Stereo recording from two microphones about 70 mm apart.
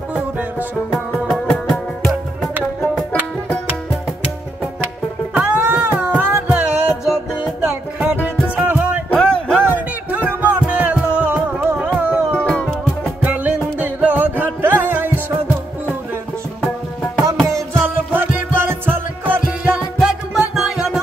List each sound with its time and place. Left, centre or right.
0.1 s music: centre
1.3 s music: centre
5.3 s music: centre
7.1 s music: centre
8.0 s music: right
9.1 s music: centre
9.5 s music: right
12.4 s music: centre
13.2 s music: right
17.7 s music: right
20.0 s music: centre